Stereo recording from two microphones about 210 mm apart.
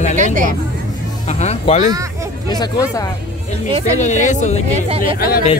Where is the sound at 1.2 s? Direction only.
35° left (ahead or behind).